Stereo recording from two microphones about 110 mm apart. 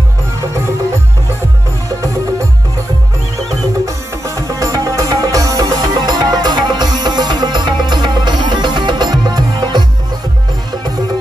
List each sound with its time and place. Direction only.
4.4 s music: 30° right (ahead or behind)